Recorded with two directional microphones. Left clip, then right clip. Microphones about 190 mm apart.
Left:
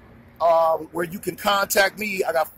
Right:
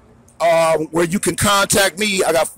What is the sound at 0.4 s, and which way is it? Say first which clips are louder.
Speech: right 4 dB; 60° right (ahead or behind).